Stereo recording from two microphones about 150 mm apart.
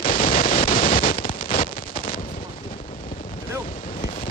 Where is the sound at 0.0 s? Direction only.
70° left (ahead or behind).